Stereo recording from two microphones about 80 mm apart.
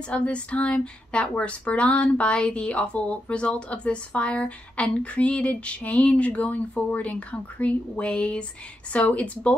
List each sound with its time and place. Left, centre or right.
0.1 s speech: centre